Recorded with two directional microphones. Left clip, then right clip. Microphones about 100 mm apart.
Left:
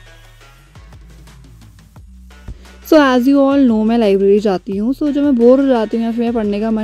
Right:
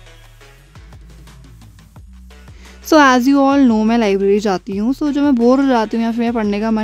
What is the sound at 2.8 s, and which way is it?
Speech, 35° left (ahead or behind).